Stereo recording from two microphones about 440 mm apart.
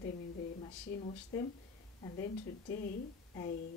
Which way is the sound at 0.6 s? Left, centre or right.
Centre.